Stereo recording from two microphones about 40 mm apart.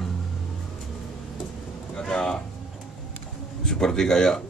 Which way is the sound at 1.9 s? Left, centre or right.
Centre.